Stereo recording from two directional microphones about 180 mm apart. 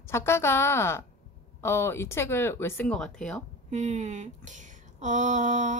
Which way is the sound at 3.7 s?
40° right (ahead or behind).